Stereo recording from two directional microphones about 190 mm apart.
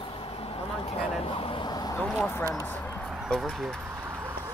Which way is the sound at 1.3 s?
30° left (ahead or behind).